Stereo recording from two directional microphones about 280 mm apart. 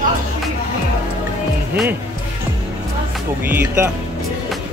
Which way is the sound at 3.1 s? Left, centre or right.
Centre.